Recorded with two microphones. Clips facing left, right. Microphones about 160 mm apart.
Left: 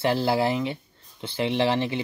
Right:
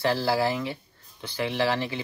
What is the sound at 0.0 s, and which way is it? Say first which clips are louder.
Speech: left 2 dB; 20° left (ahead or behind).